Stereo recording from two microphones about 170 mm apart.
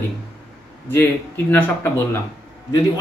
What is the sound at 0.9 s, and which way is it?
A man's voice, 15° left (ahead or behind).